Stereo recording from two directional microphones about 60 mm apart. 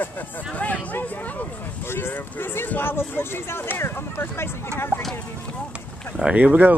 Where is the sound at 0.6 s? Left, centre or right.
Left.